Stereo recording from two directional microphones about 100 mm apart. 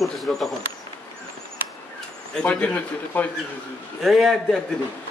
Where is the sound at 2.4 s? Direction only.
15° left (ahead or behind).